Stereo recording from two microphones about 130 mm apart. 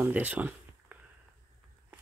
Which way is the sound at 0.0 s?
10° right (ahead or behind).